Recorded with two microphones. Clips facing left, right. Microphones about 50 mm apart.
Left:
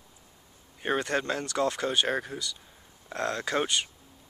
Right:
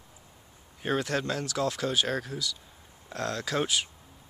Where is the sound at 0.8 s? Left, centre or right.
Centre.